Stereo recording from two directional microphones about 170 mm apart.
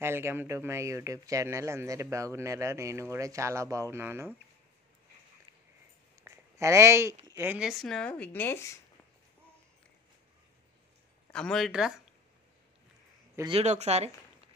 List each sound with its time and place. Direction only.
0.0 s speech: 15° right (ahead or behind)
6.2 s a woman's voice: 15° right (ahead or behind); by 8.7 s 15° left (ahead or behind)
11.3 s speech: 5° left (ahead or behind)
13.5 s speech: 40° right (ahead or behind)